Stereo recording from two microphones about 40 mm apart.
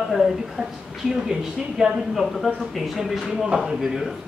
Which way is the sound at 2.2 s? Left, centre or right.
Centre.